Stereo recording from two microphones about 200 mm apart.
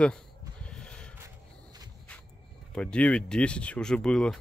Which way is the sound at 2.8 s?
5° left (ahead or behind).